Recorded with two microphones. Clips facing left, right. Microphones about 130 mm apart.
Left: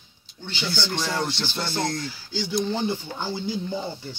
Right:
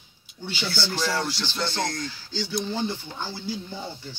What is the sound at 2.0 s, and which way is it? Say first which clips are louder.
Speech: left 2 dB; 15° left (ahead or behind).